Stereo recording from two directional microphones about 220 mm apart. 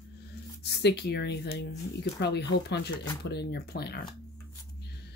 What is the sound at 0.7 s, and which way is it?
Speech, 50° left (ahead or behind).